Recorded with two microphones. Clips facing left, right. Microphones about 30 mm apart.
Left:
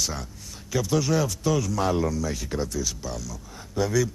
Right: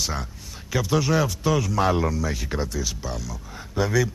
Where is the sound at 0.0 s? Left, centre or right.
Centre.